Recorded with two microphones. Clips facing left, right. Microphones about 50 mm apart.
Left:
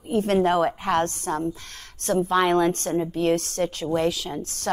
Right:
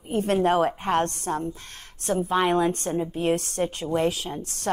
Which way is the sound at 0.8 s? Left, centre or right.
Centre.